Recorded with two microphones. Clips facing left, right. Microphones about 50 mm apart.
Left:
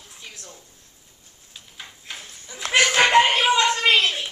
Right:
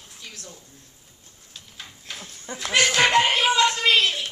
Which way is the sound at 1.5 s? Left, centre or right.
Centre.